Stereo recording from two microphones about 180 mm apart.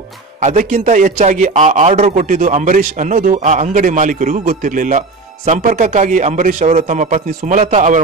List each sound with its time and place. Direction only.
0.4 s a man's voice: 45° right (ahead or behind)